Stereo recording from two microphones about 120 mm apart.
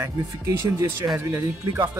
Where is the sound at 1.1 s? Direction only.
15° right (ahead or behind).